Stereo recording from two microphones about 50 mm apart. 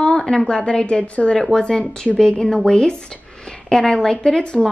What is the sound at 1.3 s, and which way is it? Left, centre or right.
A woman's voice, centre.